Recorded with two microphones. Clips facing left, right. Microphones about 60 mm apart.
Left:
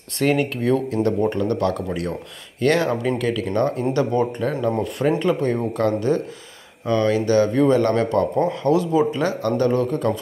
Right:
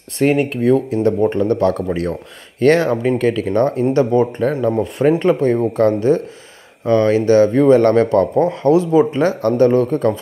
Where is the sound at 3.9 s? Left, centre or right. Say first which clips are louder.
Right 6 dB; right.